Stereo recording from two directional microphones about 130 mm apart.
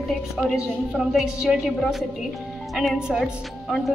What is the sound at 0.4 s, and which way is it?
A woman's voice, 5° right (ahead or behind).